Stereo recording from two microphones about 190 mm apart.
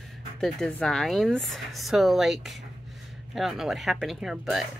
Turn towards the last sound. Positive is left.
turn(degrees=0)  # may be behind; listen again after turning